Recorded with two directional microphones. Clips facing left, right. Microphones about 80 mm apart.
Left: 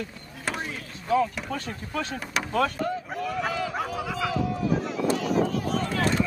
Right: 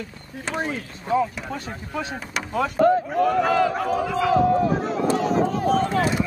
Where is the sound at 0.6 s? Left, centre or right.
Right.